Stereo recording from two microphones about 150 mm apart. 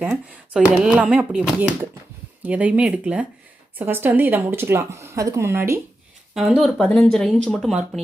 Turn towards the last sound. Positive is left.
turn(degrees=0)  # may be behind; listen again after turning